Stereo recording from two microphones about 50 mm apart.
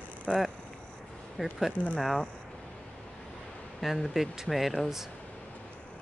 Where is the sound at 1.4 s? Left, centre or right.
Centre.